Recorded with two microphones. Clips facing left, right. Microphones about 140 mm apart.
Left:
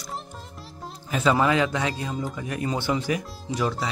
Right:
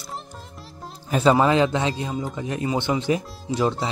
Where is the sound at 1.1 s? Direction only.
30° right (ahead or behind).